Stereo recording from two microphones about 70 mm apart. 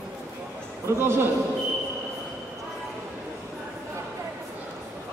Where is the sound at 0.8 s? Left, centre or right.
Right.